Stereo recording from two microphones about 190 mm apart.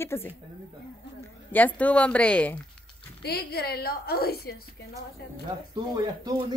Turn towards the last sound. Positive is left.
turn(degrees=-20)  # may be behind; listen again after turning